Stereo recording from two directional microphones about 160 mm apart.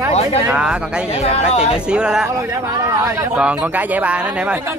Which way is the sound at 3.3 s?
5° right (ahead or behind).